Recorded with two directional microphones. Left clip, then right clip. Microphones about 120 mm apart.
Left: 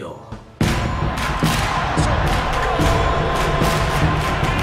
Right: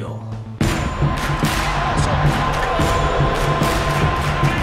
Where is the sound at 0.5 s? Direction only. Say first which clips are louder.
Even; centre (ahead or behind).